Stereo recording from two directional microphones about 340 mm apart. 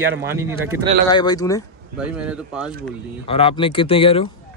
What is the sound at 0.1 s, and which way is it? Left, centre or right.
Speech, centre.